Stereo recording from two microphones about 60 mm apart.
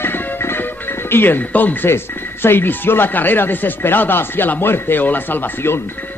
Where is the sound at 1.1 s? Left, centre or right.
Left.